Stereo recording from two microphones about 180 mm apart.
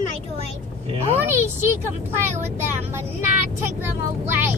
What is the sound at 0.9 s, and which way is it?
Speech, 35° right (ahead or behind).